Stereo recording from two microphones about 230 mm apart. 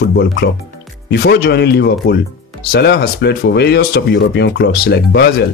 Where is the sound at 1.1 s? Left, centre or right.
Left.